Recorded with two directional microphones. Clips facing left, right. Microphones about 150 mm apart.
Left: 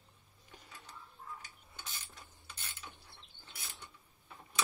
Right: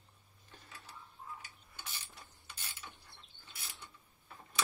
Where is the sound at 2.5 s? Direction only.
10° right (ahead or behind).